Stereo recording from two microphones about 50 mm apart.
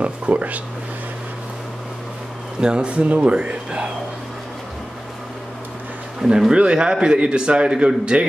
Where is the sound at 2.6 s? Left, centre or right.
Centre.